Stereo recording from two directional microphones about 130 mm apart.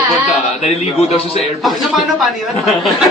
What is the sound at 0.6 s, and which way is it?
Speech, 50° left (ahead or behind).